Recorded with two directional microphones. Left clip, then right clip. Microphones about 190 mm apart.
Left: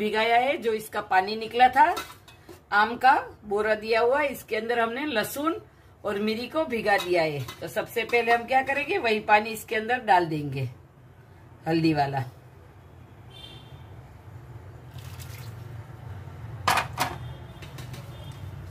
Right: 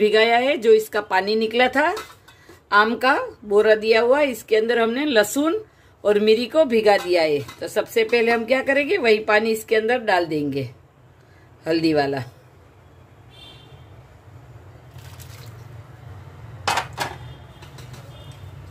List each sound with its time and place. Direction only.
0.0 s a woman's voice: 55° right (ahead or behind)
11.6 s a woman's voice: 50° right (ahead or behind)